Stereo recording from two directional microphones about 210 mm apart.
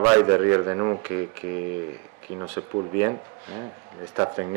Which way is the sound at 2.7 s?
40° right (ahead or behind).